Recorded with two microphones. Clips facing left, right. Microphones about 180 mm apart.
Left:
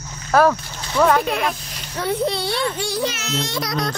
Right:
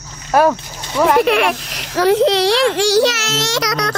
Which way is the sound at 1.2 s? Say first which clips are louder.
Right 7 dB; 80° right.